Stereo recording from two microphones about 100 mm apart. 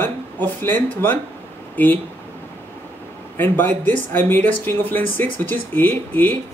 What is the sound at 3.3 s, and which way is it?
Speech, 20° left (ahead or behind).